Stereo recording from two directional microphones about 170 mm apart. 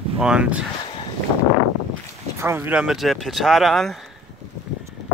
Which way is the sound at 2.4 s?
15° right (ahead or behind).